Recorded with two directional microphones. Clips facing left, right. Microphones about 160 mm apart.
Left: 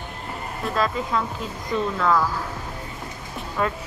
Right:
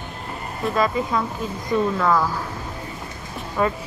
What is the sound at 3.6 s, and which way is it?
Speech, 5° right (ahead or behind).